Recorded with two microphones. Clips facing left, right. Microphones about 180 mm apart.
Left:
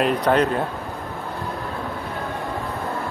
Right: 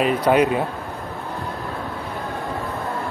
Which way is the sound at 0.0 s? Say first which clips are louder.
Right 2 dB; 10° right (ahead or behind).